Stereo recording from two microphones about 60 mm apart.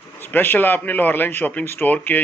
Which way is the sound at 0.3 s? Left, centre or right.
Left.